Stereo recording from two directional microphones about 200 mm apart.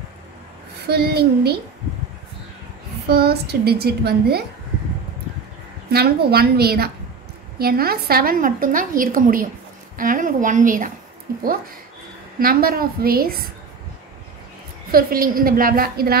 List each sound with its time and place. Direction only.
0.8 s a woman's voice: 55° right (ahead or behind)
3.1 s a woman's voice: 50° right (ahead or behind)
5.9 s a woman's voice: 50° right (ahead or behind)
14.9 s a woman's voice: 45° right (ahead or behind)